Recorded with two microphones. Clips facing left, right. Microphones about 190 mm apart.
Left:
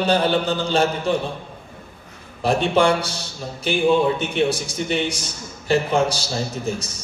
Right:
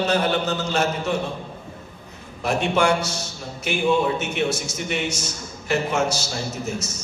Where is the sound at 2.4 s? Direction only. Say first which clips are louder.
Left 3 dB; 30° left (ahead or behind).